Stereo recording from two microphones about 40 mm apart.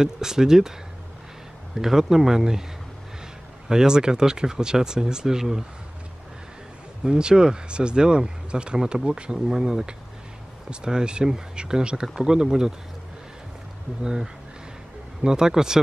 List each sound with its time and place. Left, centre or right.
0.0 s speech: centre
1.8 s speech: centre
3.6 s speech: centre
7.1 s speech: right
14.0 s speech: centre